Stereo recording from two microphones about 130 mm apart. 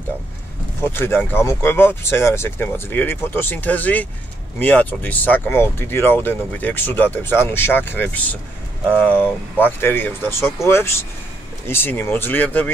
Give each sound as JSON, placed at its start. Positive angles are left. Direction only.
{"t": 0.8, "sound": "speech", "side_deg": 15}